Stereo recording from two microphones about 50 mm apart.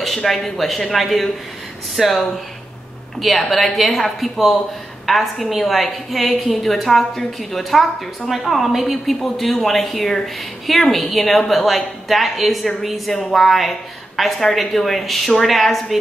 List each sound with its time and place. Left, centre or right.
0.0 s a woman's voice: centre